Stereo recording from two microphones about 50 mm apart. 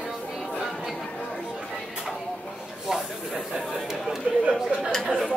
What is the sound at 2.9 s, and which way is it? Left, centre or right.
Speech, centre.